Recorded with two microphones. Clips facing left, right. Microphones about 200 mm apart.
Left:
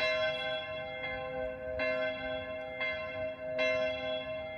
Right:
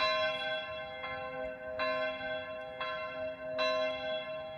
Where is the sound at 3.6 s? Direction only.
20° left (ahead or behind).